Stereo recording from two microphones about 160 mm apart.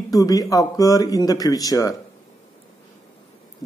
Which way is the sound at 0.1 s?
20° left (ahead or behind).